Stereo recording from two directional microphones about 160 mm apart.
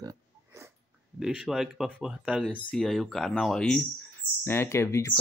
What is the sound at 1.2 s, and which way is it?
Speech, 5° right (ahead or behind).